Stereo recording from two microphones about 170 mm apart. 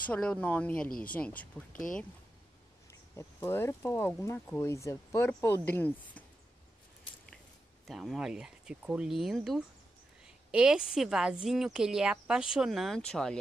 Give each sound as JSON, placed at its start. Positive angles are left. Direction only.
{"t": 0.0, "sound": "speech", "side_deg": 5}
{"t": 2.9, "sound": "speech", "side_deg": 15}
{"t": 7.8, "sound": "a woman's voice", "side_deg": 0}